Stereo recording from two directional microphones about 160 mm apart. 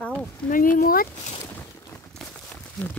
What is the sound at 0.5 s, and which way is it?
Speech, 60° left (ahead or behind).